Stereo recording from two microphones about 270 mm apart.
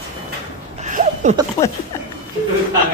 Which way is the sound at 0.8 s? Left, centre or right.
Right.